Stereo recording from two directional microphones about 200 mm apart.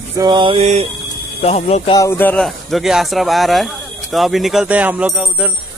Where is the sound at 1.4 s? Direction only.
30° left (ahead or behind).